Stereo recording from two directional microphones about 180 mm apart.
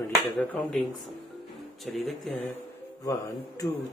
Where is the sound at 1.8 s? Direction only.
Centre (ahead or behind).